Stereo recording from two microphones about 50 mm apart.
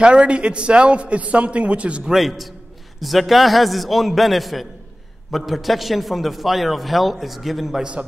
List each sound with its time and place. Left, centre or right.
0.0 s a man's voice: centre
2.0 s a man's voice: centre